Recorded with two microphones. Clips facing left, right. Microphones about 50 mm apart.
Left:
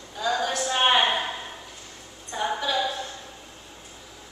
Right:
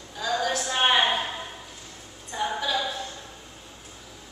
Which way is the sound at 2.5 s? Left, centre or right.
Centre.